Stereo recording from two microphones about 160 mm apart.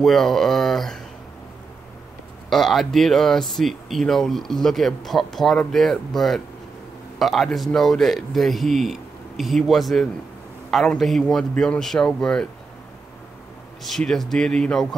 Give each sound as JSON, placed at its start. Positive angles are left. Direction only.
{"t": 0.0, "sound": "speech", "side_deg": 5}
{"t": 2.5, "sound": "speech", "side_deg": 0}
{"t": 13.8, "sound": "speech", "side_deg": 0}